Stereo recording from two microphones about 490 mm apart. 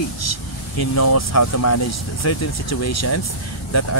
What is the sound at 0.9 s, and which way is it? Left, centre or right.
Speech, left.